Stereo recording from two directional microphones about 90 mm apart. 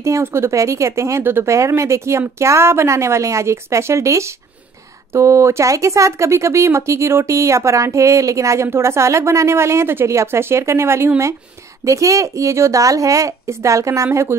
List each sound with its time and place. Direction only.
0.0 s speech: 30° right (ahead or behind)